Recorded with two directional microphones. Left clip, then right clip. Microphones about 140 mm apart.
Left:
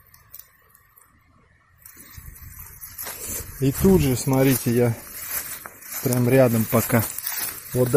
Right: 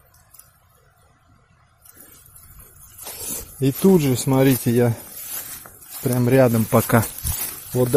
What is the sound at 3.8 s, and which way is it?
Speech, 20° right (ahead or behind).